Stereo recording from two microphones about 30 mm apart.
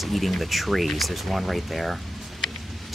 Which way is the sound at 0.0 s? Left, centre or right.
Centre.